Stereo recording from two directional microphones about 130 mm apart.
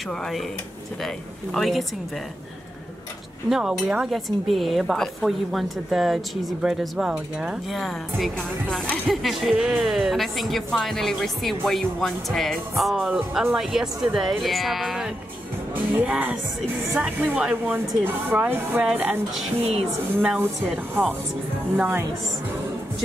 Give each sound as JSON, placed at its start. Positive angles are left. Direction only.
{"t": 0.1, "sound": "a woman's voice", "side_deg": 5}
{"t": 3.4, "sound": "a woman's voice", "side_deg": -5}
{"t": 15.7, "sound": "speech", "side_deg": -10}
{"t": 20.2, "sound": "speech", "side_deg": -15}